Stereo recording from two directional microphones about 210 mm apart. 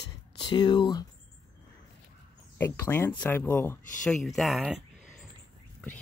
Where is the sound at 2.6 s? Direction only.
10° left (ahead or behind).